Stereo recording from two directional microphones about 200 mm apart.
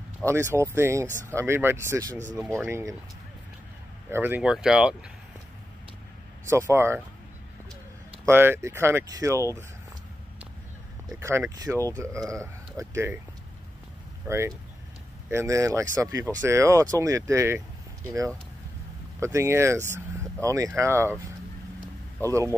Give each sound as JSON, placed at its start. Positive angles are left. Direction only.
{"t": 0.3, "sound": "speech", "side_deg": -15}
{"t": 4.1, "sound": "speech", "side_deg": -10}
{"t": 6.4, "sound": "speech", "side_deg": -15}
{"t": 8.3, "sound": "speech", "side_deg": -10}
{"t": 11.1, "sound": "speech", "side_deg": -15}
{"t": 14.2, "sound": "speech", "side_deg": -15}
{"t": 19.1, "sound": "speech", "side_deg": -15}
{"t": 22.2, "sound": "speech", "side_deg": -15}